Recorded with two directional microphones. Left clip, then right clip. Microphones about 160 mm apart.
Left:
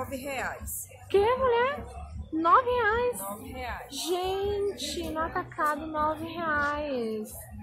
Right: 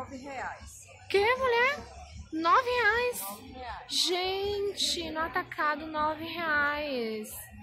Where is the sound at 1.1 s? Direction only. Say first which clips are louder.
Left 2 dB; centre (ahead or behind).